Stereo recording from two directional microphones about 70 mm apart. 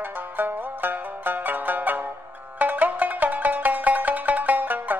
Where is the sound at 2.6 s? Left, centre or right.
Right.